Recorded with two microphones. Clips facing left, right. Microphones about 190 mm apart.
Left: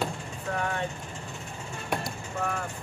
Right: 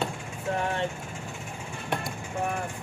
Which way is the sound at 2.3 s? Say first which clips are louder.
Right 1 dB; 15° right (ahead or behind).